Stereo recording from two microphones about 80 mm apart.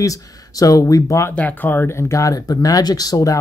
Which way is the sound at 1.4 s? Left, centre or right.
Left.